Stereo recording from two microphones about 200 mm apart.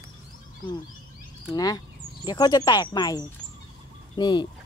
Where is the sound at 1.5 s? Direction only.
20° left (ahead or behind).